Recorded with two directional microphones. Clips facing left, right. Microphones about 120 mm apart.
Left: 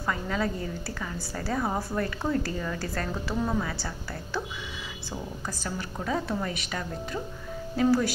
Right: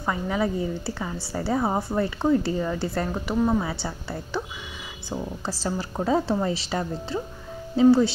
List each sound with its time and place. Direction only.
0.0 s a woman's voice: 20° right (ahead or behind)
5.5 s a woman's voice: 30° right (ahead or behind)